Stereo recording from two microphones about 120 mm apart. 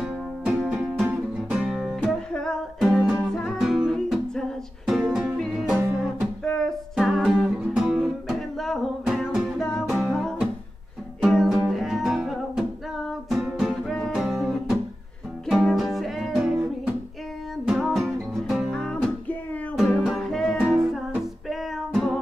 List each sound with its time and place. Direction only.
0.0 s music: 5° right (ahead or behind)